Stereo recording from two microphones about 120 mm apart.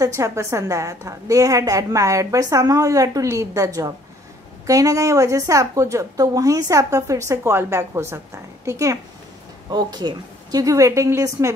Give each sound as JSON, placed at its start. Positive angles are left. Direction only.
{"t": 0.0, "sound": "a woman's voice", "side_deg": -25}